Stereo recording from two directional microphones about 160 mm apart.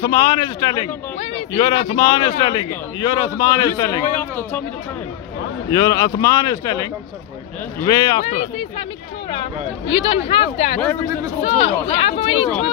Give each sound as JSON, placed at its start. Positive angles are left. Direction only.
{"t": 0.0, "sound": "a man's voice", "side_deg": 30}
{"t": 4.1, "sound": "speech", "side_deg": 10}
{"t": 5.7, "sound": "a man's voice", "side_deg": 25}
{"t": 8.2, "sound": "speech", "side_deg": 45}
{"t": 9.3, "sound": "speech", "side_deg": 30}